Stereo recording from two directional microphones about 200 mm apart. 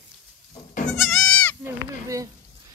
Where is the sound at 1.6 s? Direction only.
15° right (ahead or behind).